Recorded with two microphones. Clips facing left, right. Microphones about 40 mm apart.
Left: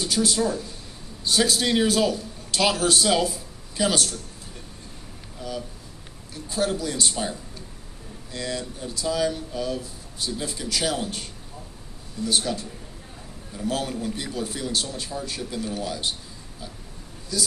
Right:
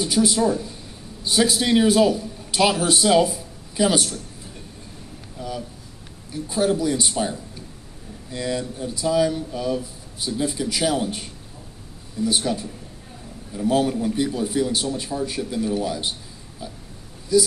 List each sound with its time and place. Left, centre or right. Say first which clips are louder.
0.0 s a man's voice: right 4 dB; centre
5.4 s a sound: right 3 dB; centre
6.3 s speech: right 4 dB; centre
13.7 s speech: right 7 dB; centre